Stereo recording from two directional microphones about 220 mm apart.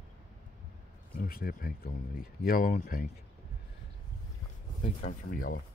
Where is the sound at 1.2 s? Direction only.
40° left (ahead or behind).